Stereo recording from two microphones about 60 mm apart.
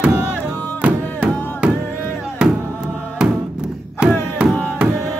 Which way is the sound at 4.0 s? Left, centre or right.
Centre.